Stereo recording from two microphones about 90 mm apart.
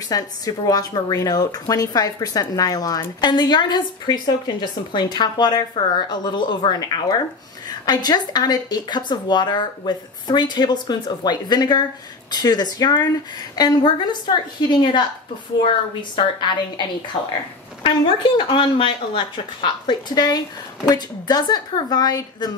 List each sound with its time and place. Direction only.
0.1 s speech: 45° left (ahead or behind)
3.2 s a woman's voice: 55° left (ahead or behind)
17.8 s speech: 70° left (ahead or behind); by 22.5 s 50° left (ahead or behind)